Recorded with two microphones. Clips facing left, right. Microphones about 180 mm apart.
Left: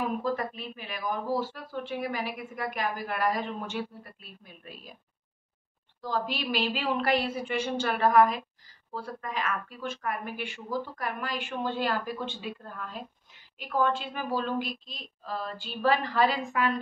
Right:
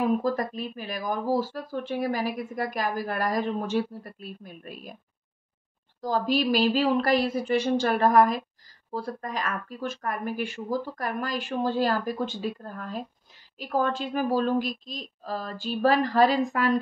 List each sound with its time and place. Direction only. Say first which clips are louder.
0.0 s speech: right 5 dB; 40° right (ahead or behind)
5.9 s speech: right 7 dB; 40° right (ahead or behind)